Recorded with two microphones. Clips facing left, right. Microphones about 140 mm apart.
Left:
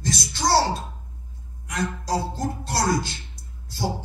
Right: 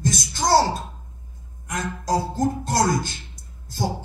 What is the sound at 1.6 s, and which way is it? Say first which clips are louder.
Speech: right 1 dB; 45° right (ahead or behind).